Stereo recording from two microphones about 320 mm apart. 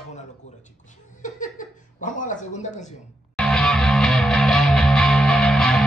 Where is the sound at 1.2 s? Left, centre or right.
Left.